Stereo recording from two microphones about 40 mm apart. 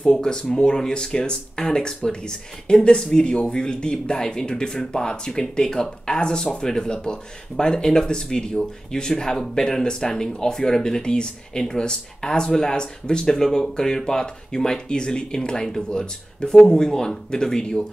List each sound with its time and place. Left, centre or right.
0.0 s speech: centre